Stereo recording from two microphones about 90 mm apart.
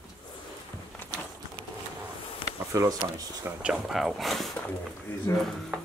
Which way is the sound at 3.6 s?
5° right (ahead or behind).